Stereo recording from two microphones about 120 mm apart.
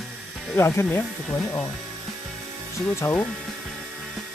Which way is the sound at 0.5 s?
20° left (ahead or behind).